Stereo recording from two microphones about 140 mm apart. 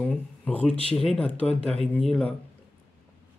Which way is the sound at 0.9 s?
5° left (ahead or behind).